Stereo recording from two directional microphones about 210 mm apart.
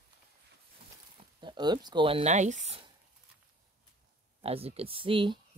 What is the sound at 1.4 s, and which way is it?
Speech, 20° right (ahead or behind).